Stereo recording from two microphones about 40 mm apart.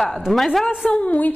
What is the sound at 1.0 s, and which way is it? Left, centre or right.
Speech, left.